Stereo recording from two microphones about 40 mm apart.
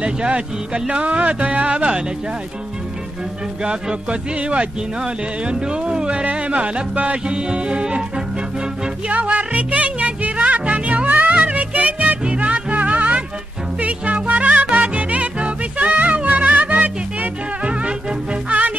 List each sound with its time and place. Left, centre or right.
0.0 s speech: right
3.6 s music: right
9.1 s music: right
11.1 s music: right
11.3 s music: right
17.6 s music: right